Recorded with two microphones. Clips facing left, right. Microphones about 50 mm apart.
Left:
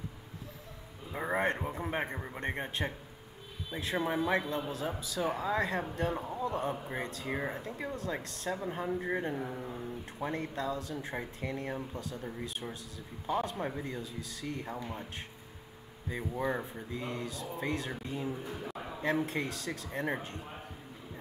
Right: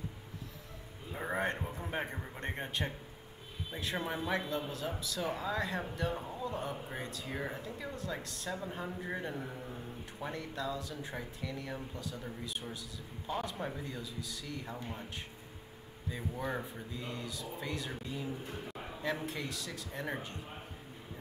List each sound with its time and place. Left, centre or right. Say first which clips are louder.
1.1 s a sound: left 4 dB; left
2.1 s speech: left 4 dB; left
3.7 s speech: left 5 dB; left
7.6 s speech: left 3 dB; left
8.8 s speech: left 6 dB; left
10.2 s speech: left 4 dB; left
16.1 s speech: left 4 dB; left